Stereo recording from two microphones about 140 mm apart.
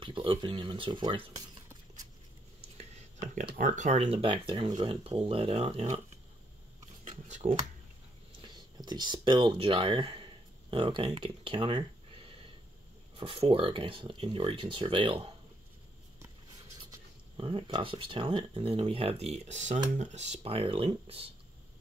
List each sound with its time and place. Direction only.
0.0 s speech: 40° right (ahead or behind)
2.8 s a sound: 55° right (ahead or behind)
3.5 s speech: 65° right (ahead or behind); by 5.9 s 45° right (ahead or behind)
7.1 s a sound: 60° right (ahead or behind)
8.4 s speech: 30° right (ahead or behind)
13.1 s speech: 40° right (ahead or behind)
17.4 s speech: 40° right (ahead or behind)